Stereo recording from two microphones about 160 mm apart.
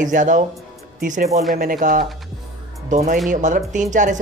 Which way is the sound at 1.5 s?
60° right (ahead or behind).